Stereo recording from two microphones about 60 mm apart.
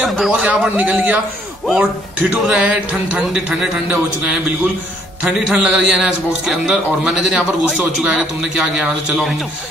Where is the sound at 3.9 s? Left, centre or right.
Centre.